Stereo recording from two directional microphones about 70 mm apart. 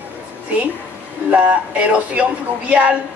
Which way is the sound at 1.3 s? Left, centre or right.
Centre.